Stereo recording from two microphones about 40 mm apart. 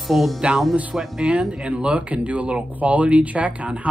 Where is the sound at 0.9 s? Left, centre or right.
Centre.